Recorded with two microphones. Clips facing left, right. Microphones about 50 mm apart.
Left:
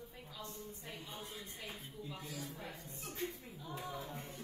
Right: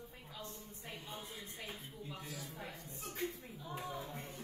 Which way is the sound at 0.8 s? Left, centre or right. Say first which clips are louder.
Right 4 dB; right.